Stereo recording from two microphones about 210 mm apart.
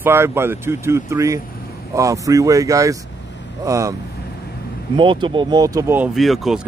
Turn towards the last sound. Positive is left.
turn(degrees=0)  # may be behind; listen again after turning